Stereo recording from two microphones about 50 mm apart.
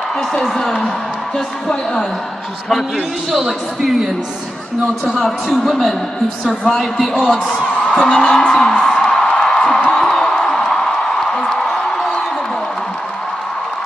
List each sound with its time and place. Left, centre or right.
3.3 s speech: centre
5.1 s a man's voice: centre
7.8 s a woman's voice: centre
9.1 s a sound: centre